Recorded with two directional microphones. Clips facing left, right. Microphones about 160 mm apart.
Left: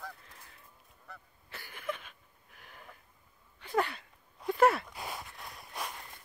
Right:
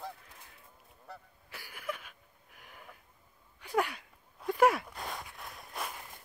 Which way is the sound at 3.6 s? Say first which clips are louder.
Even; 10° right (ahead or behind).